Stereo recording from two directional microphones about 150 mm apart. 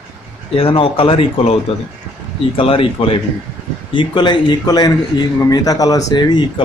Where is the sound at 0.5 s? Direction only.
40° left (ahead or behind).